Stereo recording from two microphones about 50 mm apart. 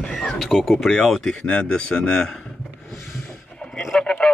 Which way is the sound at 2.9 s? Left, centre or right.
Centre.